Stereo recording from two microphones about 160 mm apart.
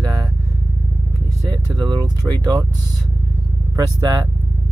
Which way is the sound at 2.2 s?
15° right (ahead or behind).